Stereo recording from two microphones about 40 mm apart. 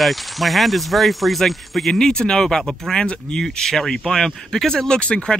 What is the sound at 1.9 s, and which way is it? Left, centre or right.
Speech, centre.